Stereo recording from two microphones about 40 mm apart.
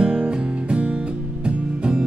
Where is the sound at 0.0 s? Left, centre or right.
Right.